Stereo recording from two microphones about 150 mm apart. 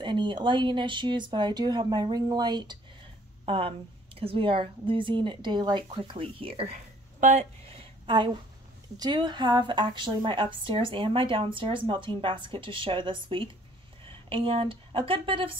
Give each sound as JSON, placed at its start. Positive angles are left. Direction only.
{"t": 0.0, "sound": "a woman's voice", "side_deg": -30}
{"t": 8.1, "sound": "a woman's voice", "side_deg": -30}